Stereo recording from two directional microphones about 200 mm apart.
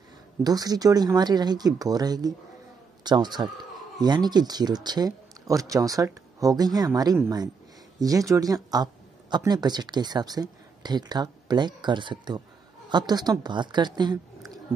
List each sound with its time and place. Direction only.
0.4 s a woman's voice: 20° right (ahead or behind)